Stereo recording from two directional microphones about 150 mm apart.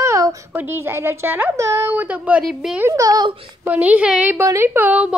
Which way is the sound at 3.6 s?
10° right (ahead or behind).